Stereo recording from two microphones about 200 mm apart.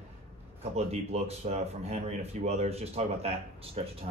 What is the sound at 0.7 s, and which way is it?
Speech, 35° right (ahead or behind).